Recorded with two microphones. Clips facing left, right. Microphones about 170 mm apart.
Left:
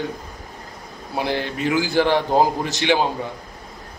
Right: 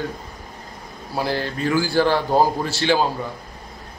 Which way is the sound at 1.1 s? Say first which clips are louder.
Even; 20° left (ahead or behind).